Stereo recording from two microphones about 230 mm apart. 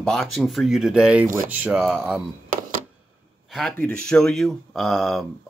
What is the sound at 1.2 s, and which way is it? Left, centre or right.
Speech, right.